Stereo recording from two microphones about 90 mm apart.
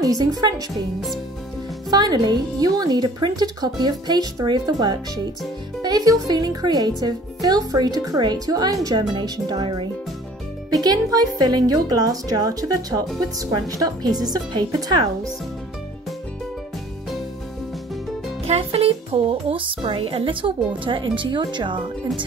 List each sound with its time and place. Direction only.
0.0 s speech: 45° right (ahead or behind)
1.9 s speech: 50° right (ahead or behind)
18.6 s speech: 90° right; by 22.2 s 65° right (ahead or behind)